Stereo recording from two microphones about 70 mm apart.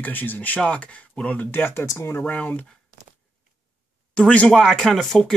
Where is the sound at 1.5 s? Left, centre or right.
Left.